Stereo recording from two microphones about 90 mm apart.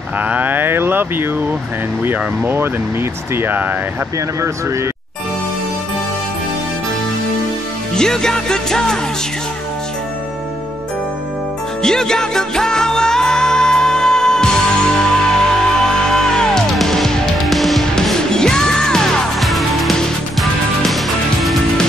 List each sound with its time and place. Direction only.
0.2 s speech: 20° right (ahead or behind)
4.4 s speech: 35° right (ahead or behind)
7.9 s music: 5° left (ahead or behind)
11.8 s music: 5° left (ahead or behind)